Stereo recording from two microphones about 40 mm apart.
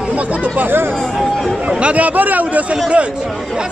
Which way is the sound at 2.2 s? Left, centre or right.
Right.